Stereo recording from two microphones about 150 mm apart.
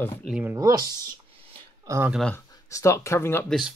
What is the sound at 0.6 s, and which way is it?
Speech, 25° right (ahead or behind).